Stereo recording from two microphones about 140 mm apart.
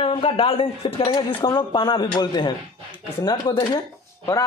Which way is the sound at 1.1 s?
30° left (ahead or behind).